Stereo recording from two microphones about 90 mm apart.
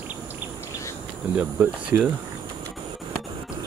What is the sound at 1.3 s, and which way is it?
Speech, 20° right (ahead or behind).